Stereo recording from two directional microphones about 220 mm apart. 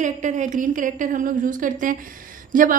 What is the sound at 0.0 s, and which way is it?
A woman's voice, 35° right (ahead or behind).